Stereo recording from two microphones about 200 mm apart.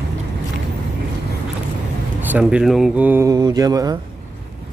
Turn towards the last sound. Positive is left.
turn(degrees=-20)  # may be behind; listen again after turning